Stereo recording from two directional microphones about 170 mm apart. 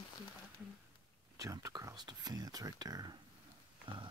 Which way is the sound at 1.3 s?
20° right (ahead or behind).